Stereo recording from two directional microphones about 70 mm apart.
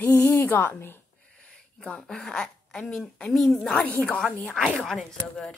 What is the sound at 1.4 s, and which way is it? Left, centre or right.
Speech, centre.